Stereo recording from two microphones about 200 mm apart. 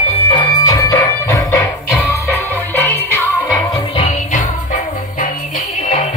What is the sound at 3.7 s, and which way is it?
Music, 30° left (ahead or behind).